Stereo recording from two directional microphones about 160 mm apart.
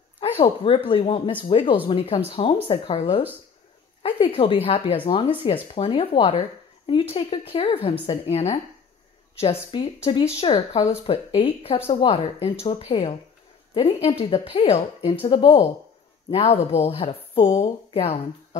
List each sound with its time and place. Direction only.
0.2 s a woman's voice: 35° left (ahead or behind)